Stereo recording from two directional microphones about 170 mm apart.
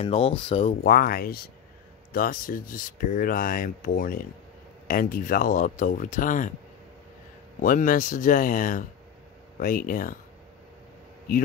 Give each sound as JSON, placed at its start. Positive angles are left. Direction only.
{"t": 0.0, "sound": "speech", "side_deg": 35}
{"t": 0.8, "sound": "speech", "side_deg": 55}
{"t": 7.6, "sound": "speech", "side_deg": 50}